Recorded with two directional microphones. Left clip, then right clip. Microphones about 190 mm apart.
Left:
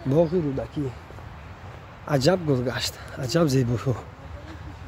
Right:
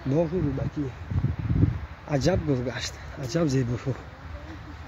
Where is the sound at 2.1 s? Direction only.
20° left (ahead or behind).